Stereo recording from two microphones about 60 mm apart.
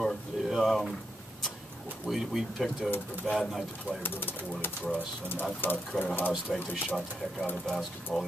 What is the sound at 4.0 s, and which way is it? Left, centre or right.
Speech, left.